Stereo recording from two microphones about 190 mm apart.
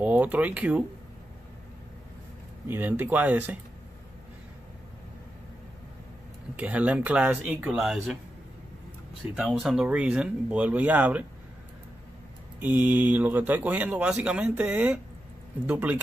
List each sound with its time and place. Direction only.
0.0 s speech: 10° right (ahead or behind)
2.7 s speech: 10° right (ahead or behind)
6.5 s speech: 5° right (ahead or behind)
9.3 s speech: centre (ahead or behind)
12.5 s speech: 10° right (ahead or behind)